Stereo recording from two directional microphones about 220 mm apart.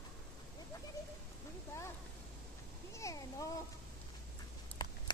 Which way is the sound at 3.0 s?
15° left (ahead or behind).